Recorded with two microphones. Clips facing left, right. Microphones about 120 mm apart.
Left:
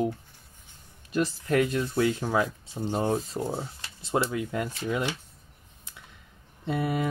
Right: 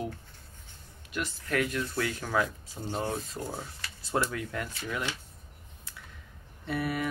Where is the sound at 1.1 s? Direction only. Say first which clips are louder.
Left 6 dB; 30° left (ahead or behind).